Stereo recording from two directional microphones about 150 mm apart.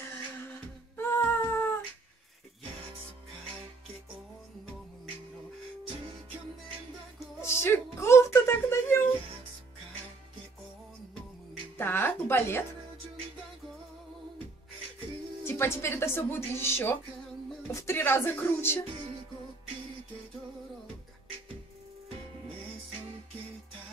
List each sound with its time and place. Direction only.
0.0 s humming: 15° left (ahead or behind)
7.4 s music: 15° left (ahead or behind)
11.8 s music: 15° left (ahead or behind)
15.4 s a woman's voice: 15° left (ahead or behind)